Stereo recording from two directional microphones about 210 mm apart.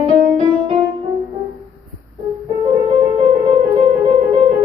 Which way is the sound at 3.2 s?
30° right (ahead or behind).